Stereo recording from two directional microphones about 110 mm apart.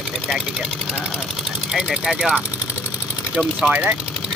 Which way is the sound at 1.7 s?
5° right (ahead or behind).